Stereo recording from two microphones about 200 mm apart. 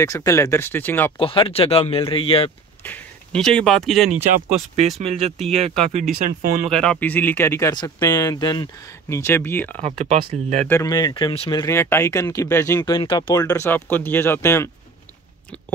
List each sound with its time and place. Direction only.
0.0 s speech: 15° left (ahead or behind)
1.1 s speech: 25° left (ahead or behind)
2.8 s speech: 5° left (ahead or behind)
4.7 s speech: 30° right (ahead or behind)
6.1 s speech: 45° right (ahead or behind)
6.7 s speech: 5° left (ahead or behind)
9.8 s speech: 35° right (ahead or behind)
10.7 s speech: 15° left (ahead or behind)